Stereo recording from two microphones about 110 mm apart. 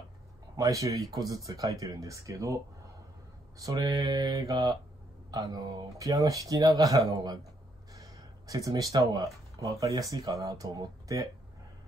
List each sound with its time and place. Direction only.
0.6 s speech: 30° right (ahead or behind)
7.9 s a sound: 35° right (ahead or behind)
9.1 s speech: 30° right (ahead or behind)